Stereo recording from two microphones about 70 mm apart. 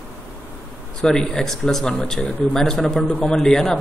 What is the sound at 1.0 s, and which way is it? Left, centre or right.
A man's voice, centre.